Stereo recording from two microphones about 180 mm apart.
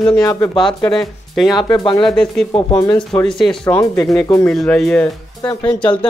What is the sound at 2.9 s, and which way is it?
Speech, 5° left (ahead or behind).